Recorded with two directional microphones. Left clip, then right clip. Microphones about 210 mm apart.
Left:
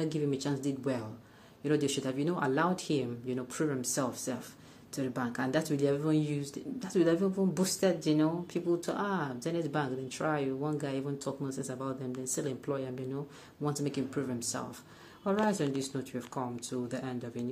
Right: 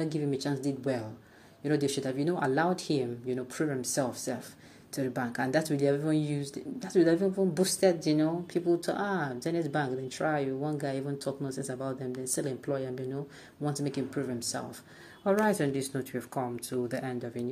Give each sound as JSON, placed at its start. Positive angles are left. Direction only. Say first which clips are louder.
{"t": 0.0, "sound": "speech", "louder": "right 1 dB", "side_deg": 0}
{"t": 15.2, "sound": "speech", "louder": "right 4 dB", "side_deg": -15}